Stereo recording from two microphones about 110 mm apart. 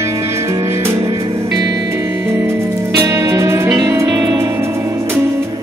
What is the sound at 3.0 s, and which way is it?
Music, 25° right (ahead or behind).